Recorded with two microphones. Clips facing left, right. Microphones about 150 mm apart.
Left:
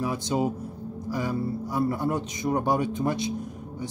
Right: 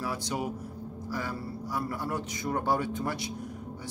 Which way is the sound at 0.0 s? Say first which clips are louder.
Left 6 dB; 20° left (ahead or behind).